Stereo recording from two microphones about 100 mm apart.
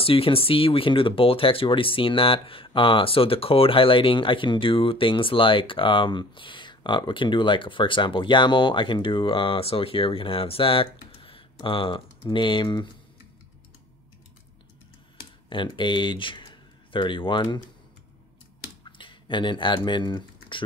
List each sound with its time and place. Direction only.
0.0 s speech: 65° left (ahead or behind); by 12.9 s 50° left (ahead or behind)
15.5 s speech: 55° left (ahead or behind)
18.9 s speech: 55° left (ahead or behind)